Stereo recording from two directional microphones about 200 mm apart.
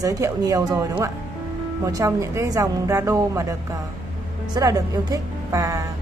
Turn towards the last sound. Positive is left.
turn(degrees=-15)  # may be behind; listen again after turning